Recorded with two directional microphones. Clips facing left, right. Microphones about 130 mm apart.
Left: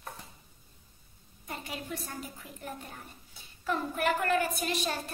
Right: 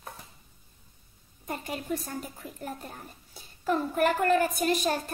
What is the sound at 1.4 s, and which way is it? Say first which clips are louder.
A child's voice: right 5 dB; 45° right (ahead or behind).